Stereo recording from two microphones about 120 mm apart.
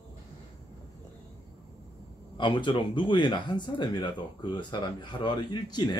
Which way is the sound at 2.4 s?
45° left (ahead or behind).